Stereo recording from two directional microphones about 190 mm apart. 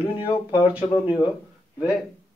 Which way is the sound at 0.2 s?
25° left (ahead or behind).